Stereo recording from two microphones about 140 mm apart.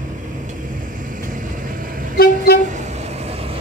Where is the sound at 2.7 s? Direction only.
55° right (ahead or behind).